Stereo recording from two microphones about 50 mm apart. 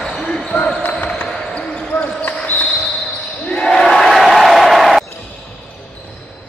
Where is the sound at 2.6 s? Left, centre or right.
Centre.